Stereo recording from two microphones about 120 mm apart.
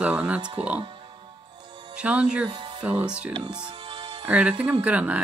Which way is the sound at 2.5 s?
40° right (ahead or behind).